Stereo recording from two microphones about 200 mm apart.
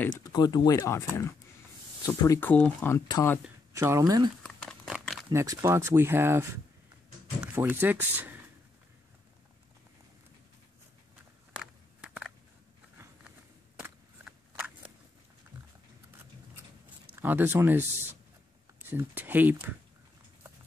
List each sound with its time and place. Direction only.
0.2 s speech: 20° left (ahead or behind)
3.4 s speech: 15° right (ahead or behind)
4.4 s crumpling: 5° left (ahead or behind)
5.3 s speech: 15° right (ahead or behind)
11.5 s a sound: 5° right (ahead or behind)
13.7 s a sound: 10° right (ahead or behind)
17.1 s speech: 10° right (ahead or behind)
18.9 s speech: 10° right (ahead or behind)